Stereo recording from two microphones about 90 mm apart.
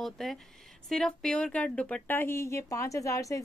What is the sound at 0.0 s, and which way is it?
Speech, centre (ahead or behind).